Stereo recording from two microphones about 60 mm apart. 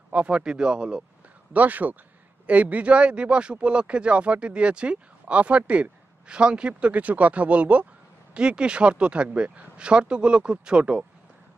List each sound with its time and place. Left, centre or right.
0.1 s speech: centre
1.5 s speech: right